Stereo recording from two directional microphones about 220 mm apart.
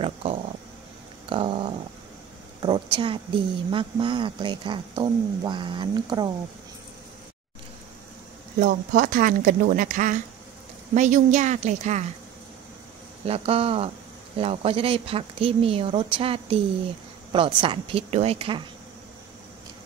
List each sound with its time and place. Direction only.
0.0 s a sound: 25° right (ahead or behind)
2.6 s speech: 20° right (ahead or behind)
8.5 s speech: 35° right (ahead or behind)
13.2 s speech: 25° right (ahead or behind)